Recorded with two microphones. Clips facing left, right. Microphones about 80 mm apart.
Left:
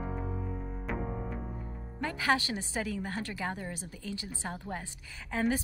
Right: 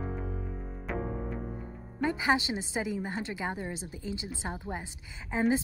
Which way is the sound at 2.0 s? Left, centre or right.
Centre.